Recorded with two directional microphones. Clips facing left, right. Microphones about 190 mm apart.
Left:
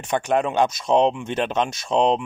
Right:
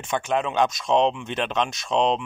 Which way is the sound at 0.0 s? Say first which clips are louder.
Left 3 dB; 40° left (ahead or behind).